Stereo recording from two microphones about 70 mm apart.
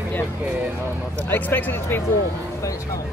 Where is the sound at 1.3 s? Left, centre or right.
Left.